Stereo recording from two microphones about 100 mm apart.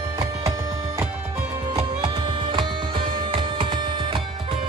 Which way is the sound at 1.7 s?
50° right (ahead or behind).